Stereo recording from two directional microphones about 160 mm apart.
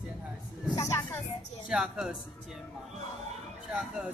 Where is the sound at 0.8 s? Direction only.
20° left (ahead or behind).